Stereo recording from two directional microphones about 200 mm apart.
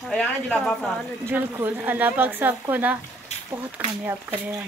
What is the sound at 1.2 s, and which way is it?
Speech, 10° right (ahead or behind).